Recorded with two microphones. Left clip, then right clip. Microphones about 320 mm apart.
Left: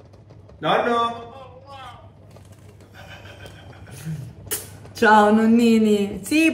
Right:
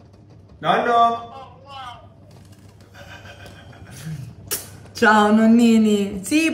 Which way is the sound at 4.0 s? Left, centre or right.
Centre.